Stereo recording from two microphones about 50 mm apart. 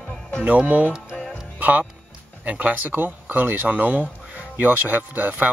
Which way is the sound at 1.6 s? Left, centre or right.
Right.